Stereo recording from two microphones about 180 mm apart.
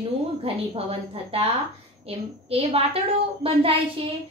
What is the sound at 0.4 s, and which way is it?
A child's voice, 35° right (ahead or behind).